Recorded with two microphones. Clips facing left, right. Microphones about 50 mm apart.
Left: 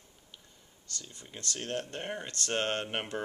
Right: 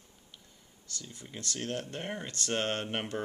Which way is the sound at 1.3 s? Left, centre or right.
Centre.